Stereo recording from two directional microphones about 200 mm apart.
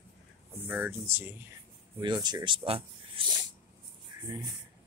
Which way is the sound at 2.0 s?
20° right (ahead or behind).